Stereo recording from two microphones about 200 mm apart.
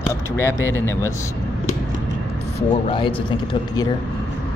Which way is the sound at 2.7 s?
25° left (ahead or behind).